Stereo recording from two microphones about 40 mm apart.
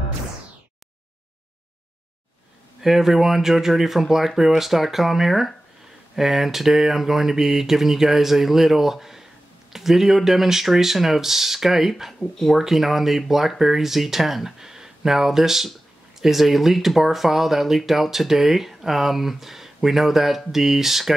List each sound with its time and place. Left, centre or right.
2.8 s speech: centre